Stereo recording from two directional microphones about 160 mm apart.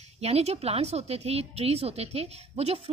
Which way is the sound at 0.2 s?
40° right (ahead or behind).